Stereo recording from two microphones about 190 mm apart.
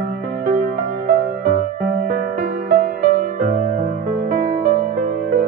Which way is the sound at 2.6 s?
50° right (ahead or behind).